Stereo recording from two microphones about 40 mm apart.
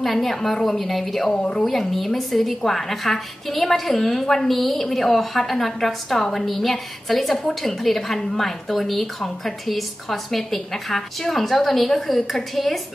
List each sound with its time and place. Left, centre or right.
0.0 s a woman's voice: centre
1.3 s a woman's voice: left
1.6 s a woman's voice: centre